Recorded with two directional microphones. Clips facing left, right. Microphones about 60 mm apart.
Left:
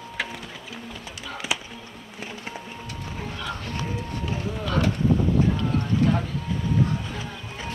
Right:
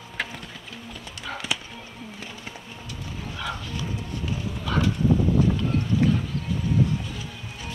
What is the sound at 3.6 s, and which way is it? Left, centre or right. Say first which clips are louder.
Music: left 2 dB; left.